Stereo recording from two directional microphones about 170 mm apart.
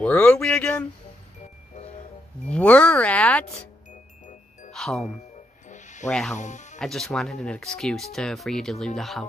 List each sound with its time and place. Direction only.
0.0 s speech: 5° left (ahead or behind)
2.4 s speech: 5° left (ahead or behind)
4.7 s speech: centre (ahead or behind)
5.7 s music: 45° left (ahead or behind)
6.0 s speech: 5° left (ahead or behind)
6.3 s speech: 45° left (ahead or behind)
6.8 s speech: centre (ahead or behind)